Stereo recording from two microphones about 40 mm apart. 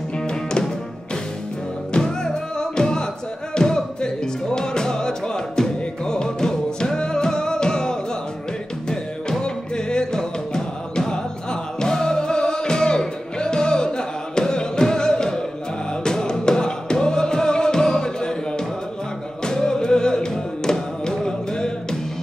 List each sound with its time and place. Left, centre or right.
2.0 s music: centre
9.4 s music: left
19.4 s music: centre